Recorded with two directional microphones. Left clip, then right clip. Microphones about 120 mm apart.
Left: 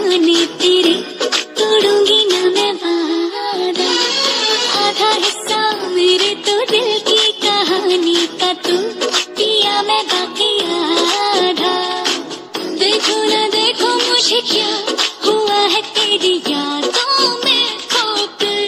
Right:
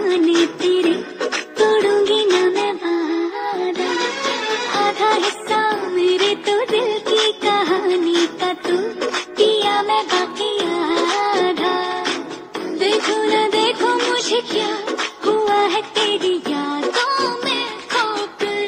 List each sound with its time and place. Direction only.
0.0 s music: 30° left (ahead or behind)